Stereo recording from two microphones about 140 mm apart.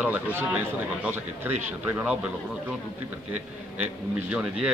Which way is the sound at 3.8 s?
10° right (ahead or behind).